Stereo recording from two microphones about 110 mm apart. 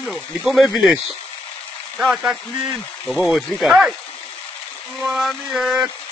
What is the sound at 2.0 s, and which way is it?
Speech, 5° right (ahead or behind).